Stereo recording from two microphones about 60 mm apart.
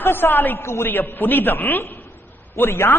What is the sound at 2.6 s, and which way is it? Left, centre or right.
Speech, left.